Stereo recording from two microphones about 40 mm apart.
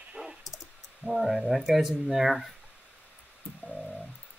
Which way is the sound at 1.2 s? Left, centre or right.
Centre.